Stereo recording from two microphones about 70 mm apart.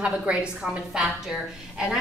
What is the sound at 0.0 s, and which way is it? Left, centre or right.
Speech, centre.